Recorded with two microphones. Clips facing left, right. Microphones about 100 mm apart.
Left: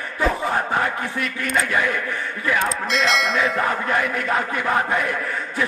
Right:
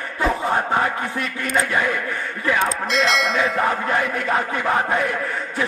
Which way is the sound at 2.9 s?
Centre (ahead or behind).